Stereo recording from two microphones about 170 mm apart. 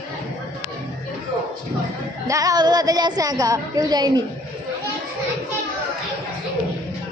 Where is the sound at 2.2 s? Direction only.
20° right (ahead or behind).